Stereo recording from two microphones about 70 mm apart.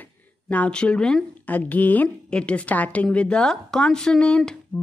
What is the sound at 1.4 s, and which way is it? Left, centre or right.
A woman's voice, left.